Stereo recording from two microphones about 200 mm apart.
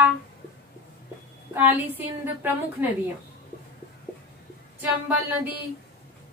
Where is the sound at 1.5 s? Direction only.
10° right (ahead or behind).